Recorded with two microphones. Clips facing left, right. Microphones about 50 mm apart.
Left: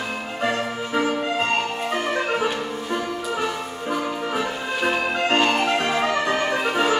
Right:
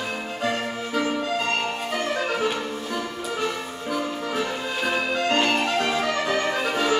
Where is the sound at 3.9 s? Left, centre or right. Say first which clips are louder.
Left 1 dB; centre.